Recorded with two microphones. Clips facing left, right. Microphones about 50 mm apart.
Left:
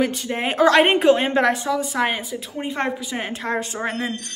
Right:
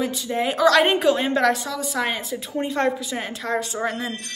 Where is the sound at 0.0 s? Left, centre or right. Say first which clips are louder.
Left 1 dB; left.